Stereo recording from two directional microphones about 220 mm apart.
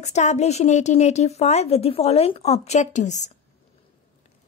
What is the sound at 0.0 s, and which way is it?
Speech, 30° left (ahead or behind).